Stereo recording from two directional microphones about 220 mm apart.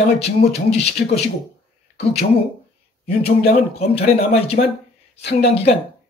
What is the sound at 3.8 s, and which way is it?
Speech, 30° left (ahead or behind).